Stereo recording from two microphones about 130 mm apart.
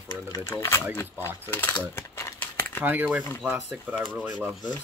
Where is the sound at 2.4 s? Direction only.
15° left (ahead or behind).